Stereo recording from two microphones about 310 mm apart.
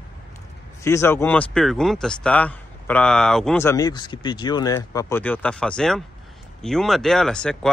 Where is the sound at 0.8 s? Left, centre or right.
Centre.